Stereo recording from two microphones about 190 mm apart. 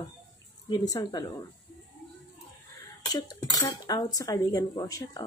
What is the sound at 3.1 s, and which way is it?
Speech, 20° left (ahead or behind).